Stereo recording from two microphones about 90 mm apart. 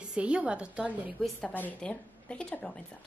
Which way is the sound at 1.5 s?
20° left (ahead or behind).